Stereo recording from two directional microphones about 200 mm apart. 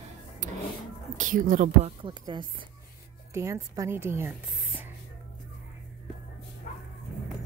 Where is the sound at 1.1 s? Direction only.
40° right (ahead or behind).